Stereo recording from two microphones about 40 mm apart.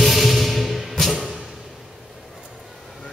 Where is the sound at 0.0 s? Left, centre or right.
Centre.